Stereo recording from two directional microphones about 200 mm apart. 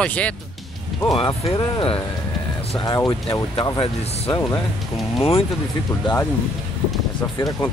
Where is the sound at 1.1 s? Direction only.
25° left (ahead or behind).